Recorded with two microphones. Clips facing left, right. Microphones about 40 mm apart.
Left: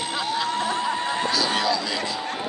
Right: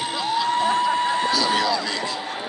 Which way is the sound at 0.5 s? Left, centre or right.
Right.